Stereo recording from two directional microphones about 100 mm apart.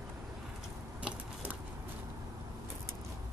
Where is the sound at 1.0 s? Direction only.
15° right (ahead or behind).